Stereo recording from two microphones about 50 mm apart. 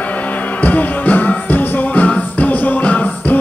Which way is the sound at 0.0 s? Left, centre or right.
Left.